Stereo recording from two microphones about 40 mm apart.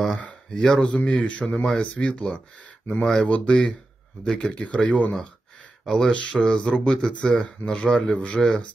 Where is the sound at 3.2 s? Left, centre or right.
Left.